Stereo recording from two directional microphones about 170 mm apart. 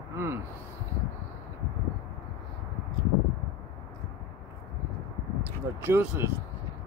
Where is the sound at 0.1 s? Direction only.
15° right (ahead or behind).